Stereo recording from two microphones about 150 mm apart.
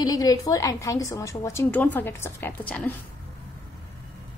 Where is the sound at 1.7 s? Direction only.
10° left (ahead or behind).